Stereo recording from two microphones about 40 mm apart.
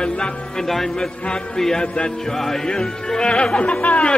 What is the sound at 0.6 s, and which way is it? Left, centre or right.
Chant, centre.